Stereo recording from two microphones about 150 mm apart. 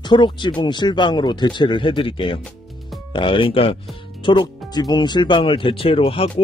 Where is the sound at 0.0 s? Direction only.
30° left (ahead or behind).